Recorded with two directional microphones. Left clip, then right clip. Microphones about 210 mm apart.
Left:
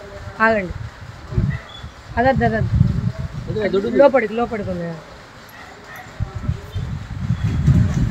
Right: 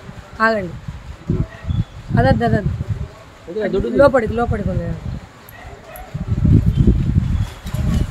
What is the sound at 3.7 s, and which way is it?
Speech, 15° right (ahead or behind).